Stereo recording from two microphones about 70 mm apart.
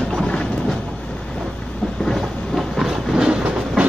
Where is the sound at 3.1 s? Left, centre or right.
Centre.